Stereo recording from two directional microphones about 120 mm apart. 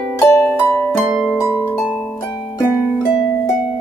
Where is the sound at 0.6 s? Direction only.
20° left (ahead or behind).